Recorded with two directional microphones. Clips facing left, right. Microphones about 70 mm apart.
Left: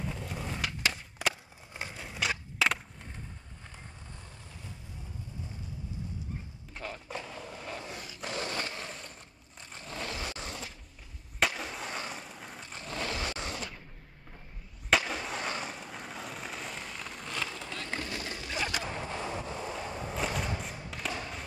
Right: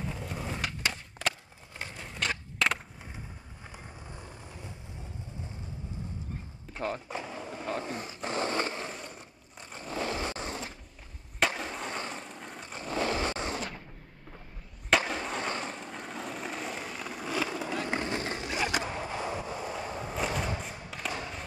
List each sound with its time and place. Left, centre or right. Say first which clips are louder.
0.0 s skateboard: right 1 dB; centre
1.2 s a sound: even; centre
3.6 s vehicle: right 4 dB; centre
7.2 s a sound: right 3 dB; centre
7.7 s skateboard: right 6 dB; right
9.6 s crushing: right 3 dB; right
9.8 s scrape: right 6 dB; centre
10.1 s a sound: right 5 dB; right
11.3 s skateboard: right 1 dB; centre
12.6 s vehicle: right 6 dB; right
13.1 s a sound: right 5 dB; right
15.0 s vehicle: right 2 dB; centre; by 18.9 s right
18.9 s skateboard: right 2 dB; centre